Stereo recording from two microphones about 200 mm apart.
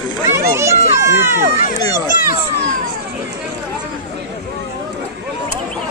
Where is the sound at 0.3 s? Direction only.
15° right (ahead or behind).